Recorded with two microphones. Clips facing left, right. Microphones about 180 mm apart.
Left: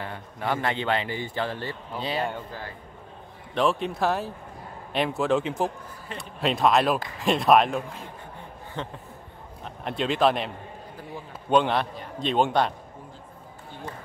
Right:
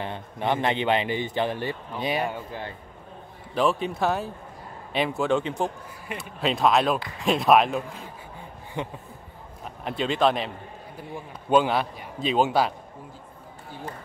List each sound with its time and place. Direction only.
0.0 s a man's voice: 20° right (ahead or behind)
3.5 s a man's voice: centre (ahead or behind)
8.8 s speech: 15° right (ahead or behind)
9.8 s a man's voice: centre (ahead or behind)
11.5 s a man's voice: 5° right (ahead or behind)